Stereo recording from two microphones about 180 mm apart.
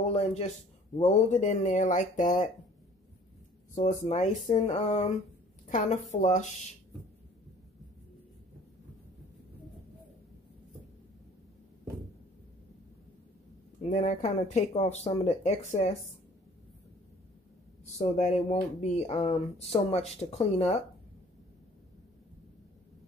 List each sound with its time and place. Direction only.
0.1 s speech: 35° left (ahead or behind)
3.7 s speech: 35° left (ahead or behind)
13.8 s speech: 35° left (ahead or behind)
17.9 s speech: 35° left (ahead or behind)